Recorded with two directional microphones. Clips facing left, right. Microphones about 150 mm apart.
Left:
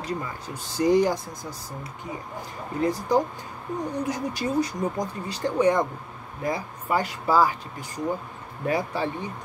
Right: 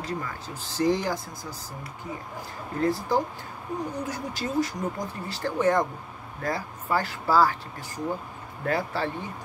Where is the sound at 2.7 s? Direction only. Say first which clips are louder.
Left 2 dB; 15° left (ahead or behind).